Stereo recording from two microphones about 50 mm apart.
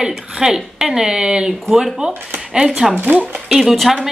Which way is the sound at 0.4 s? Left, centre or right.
Centre.